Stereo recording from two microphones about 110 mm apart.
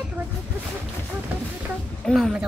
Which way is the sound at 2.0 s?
5° left (ahead or behind).